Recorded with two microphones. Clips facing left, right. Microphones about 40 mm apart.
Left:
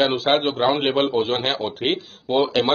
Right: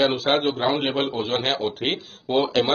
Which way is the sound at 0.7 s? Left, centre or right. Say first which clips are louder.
Left 4 dB; left.